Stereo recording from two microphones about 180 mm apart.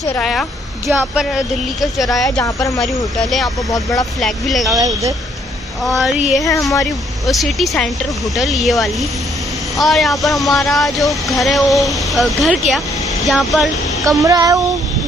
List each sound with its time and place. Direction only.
0.2 s a woman's voice: centre (ahead or behind)
2.3 s speech: 15° left (ahead or behind)
2.8 s speech: centre (ahead or behind)
3.7 s speech: 20° left (ahead or behind)
4.2 s speech: centre (ahead or behind)
4.7 s child singing: 20° right (ahead or behind)
5.9 s speech: centre (ahead or behind)
6.4 s speech: 20° left (ahead or behind)
6.8 s speech: centre (ahead or behind)
14.0 s child singing: 20° right (ahead or behind)